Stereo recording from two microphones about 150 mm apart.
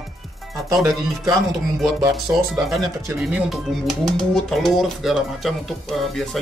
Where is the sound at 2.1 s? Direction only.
Centre (ahead or behind).